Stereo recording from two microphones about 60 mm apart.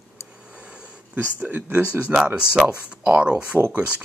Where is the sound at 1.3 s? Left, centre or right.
Right.